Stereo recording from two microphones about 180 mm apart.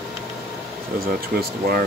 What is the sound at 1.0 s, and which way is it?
Speech, 55° right (ahead or behind).